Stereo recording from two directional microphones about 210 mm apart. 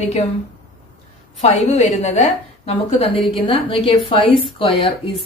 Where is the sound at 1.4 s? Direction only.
30° left (ahead or behind).